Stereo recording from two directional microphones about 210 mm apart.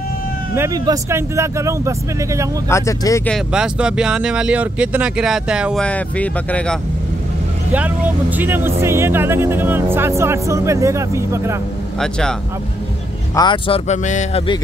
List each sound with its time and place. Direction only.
0.6 s speech: 15° right (ahead or behind)
2.7 s speech: 15° left (ahead or behind)
3.3 s speech: centre (ahead or behind)
7.7 s speech: 5° right (ahead or behind)
12.0 s speech: 5° left (ahead or behind)
13.4 s speech: 25° left (ahead or behind)